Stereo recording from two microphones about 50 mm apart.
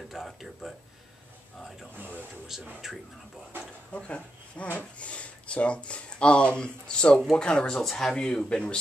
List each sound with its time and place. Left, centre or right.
0.1 s speech: centre
2.5 s speech: centre
3.9 s speech: left